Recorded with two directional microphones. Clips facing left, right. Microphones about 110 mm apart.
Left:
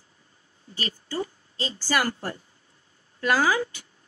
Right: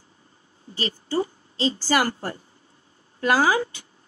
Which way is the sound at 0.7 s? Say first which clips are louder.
Right 5 dB; 25° right (ahead or behind).